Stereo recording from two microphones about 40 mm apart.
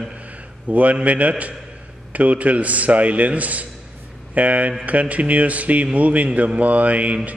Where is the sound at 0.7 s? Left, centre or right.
Right.